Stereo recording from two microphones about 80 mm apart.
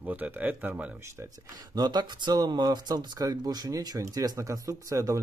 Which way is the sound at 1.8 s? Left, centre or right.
Right.